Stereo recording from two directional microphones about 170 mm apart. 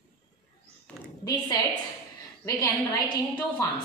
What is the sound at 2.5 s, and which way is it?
Speech, 20° left (ahead or behind).